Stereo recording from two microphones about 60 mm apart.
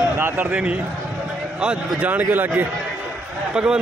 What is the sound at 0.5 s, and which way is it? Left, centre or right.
A man's voice, right.